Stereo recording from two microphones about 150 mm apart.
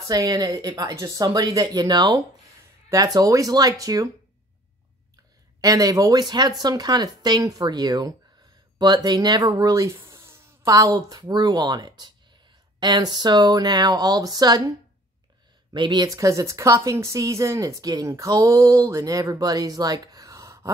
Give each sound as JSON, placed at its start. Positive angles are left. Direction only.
{"t": 0.1, "sound": "speech", "side_deg": -25}
{"t": 5.6, "sound": "speech", "side_deg": -25}
{"t": 15.7, "sound": "speech", "side_deg": -30}